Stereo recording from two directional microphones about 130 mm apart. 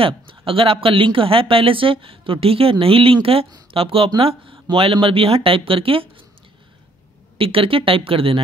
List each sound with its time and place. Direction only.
0.0 s speech: 45° right (ahead or behind)
7.3 s speech: 45° right (ahead or behind)